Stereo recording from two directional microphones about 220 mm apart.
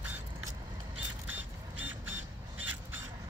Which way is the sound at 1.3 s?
10° right (ahead or behind).